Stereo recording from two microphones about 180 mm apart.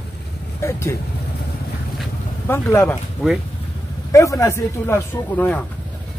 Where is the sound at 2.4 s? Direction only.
10° left (ahead or behind).